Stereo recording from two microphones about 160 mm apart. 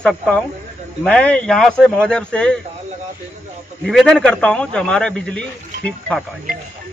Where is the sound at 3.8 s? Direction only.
Centre (ahead or behind).